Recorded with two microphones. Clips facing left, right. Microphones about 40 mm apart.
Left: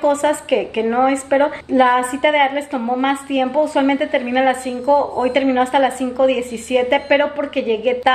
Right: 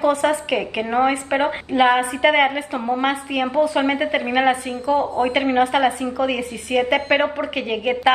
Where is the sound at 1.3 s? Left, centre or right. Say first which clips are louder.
Left 5 dB; right.